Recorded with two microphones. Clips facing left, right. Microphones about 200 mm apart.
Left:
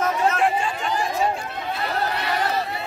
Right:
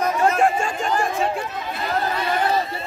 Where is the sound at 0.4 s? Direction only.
45° right (ahead or behind).